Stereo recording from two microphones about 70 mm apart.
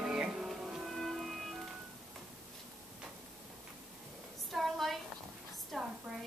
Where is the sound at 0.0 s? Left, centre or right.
Centre.